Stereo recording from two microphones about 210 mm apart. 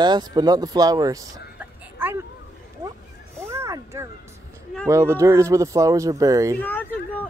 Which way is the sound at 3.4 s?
15° right (ahead or behind).